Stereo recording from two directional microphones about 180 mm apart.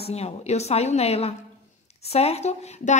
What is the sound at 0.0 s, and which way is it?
A woman's voice, 35° left (ahead or behind).